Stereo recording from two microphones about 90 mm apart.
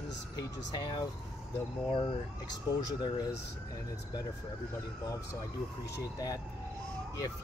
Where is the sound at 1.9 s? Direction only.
60° left (ahead or behind).